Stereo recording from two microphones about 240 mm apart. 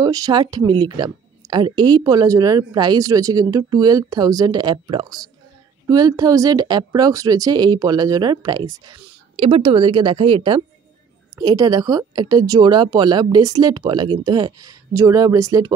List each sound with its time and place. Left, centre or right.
0.0 s a woman's voice: centre